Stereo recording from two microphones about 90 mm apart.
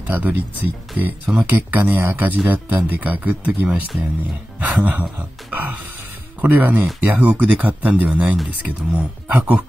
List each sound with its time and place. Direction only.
0.1 s speech: 20° right (ahead or behind)
5.5 s music: 20° right (ahead or behind)
6.4 s speech: 20° right (ahead or behind)